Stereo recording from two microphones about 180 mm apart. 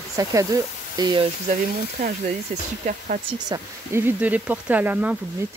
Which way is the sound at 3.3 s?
20° right (ahead or behind).